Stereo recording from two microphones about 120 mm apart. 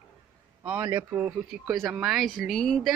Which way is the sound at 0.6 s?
20° right (ahead or behind).